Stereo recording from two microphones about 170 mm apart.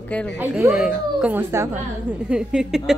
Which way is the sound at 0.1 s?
10° left (ahead or behind).